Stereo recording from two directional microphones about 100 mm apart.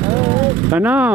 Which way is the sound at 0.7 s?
15° right (ahead or behind).